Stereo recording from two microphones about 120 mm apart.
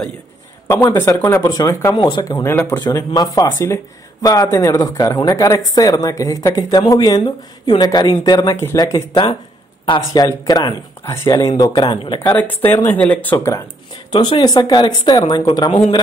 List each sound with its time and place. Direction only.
0.7 s speech: 20° left (ahead or behind)
2.0 s speech: 40° left (ahead or behind)
2.2 s speech: 30° left (ahead or behind)
2.5 s speech: 15° left (ahead or behind)
2.8 s speech: 35° left (ahead or behind)
3.4 s speech: 25° left (ahead or behind); by 10.2 s 45° left (ahead or behind)
10.2 s speech: 35° left (ahead or behind)
12.4 s speech: 15° left (ahead or behind)
14.1 s speech: 40° left (ahead or behind)